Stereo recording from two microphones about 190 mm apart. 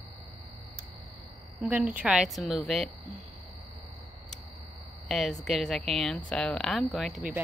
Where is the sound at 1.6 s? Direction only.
5° right (ahead or behind).